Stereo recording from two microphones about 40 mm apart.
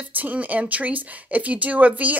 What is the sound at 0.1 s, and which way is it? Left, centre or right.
A woman's voice, right.